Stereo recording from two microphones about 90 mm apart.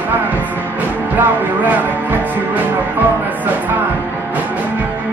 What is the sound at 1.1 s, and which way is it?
Music, 20° right (ahead or behind).